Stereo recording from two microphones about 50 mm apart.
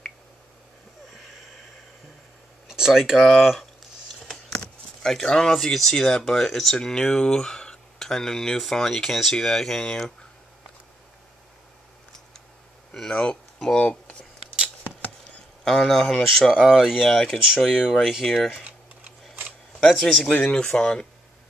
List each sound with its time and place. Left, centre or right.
1.1 s a sound: centre
2.7 s speech: centre
4.6 s speech: centre
13.1 s speech: centre
15.6 s speech: centre
17.1 s speech: centre
17.6 s speech: centre
18.2 s speech: centre
19.9 s speech: centre